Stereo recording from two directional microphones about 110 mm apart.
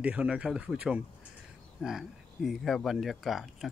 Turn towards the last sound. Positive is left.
turn(degrees=0)  # may be behind; listen again after turning